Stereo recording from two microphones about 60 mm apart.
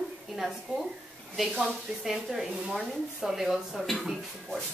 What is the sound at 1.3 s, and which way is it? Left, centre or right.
Speech, centre.